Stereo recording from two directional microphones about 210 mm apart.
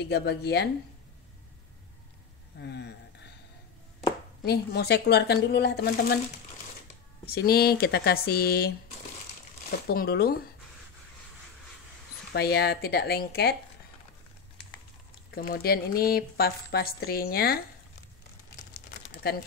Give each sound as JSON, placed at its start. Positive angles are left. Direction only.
{"t": 0.0, "sound": "speech", "side_deg": 50}
{"t": 2.6, "sound": "a sound", "side_deg": 55}
{"t": 4.5, "sound": "speech", "side_deg": 50}
{"t": 7.2, "sound": "speech", "side_deg": 45}
{"t": 12.3, "sound": "speech", "side_deg": 50}
{"t": 15.3, "sound": "speech", "side_deg": 45}
{"t": 19.2, "sound": "speech", "side_deg": 50}